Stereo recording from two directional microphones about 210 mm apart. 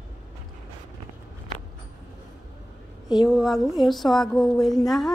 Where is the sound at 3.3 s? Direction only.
Centre (ahead or behind).